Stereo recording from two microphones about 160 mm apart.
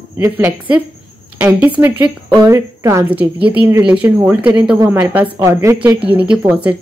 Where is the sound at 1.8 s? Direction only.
10° right (ahead or behind).